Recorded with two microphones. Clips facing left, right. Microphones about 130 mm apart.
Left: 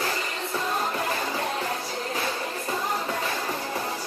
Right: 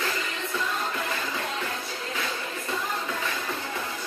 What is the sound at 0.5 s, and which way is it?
Music, 35° left (ahead or behind).